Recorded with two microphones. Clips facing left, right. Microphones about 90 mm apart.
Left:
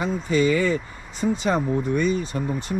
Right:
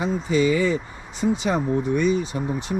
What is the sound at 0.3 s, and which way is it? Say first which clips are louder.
Speech: even; 45° left (ahead or behind).